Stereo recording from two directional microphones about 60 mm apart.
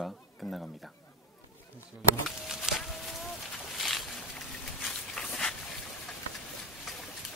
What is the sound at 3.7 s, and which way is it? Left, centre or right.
Boat, centre.